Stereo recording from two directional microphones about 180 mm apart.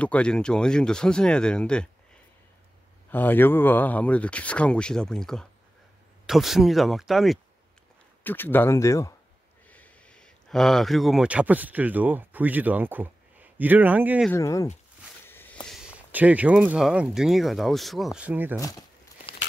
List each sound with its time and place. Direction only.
0.0 s speech: 5° left (ahead or behind)
3.1 s speech: 10° left (ahead or behind)
8.2 s speech: 10° left (ahead or behind); by 14.2 s 10° right (ahead or behind)
14.3 s speech: 15° left (ahead or behind)
15.2 s walk: 10° left (ahead or behind)
16.1 s speech: 10° right (ahead or behind)
18.6 s speech: 20° left (ahead or behind)
19.3 s a sound: 30° left (ahead or behind)